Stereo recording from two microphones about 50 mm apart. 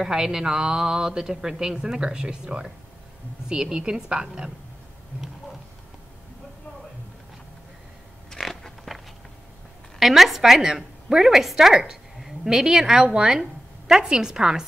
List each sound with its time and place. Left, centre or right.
0.0 s a woman's voice: centre
8.3 s a sound: centre
9.9 s a woman's voice: centre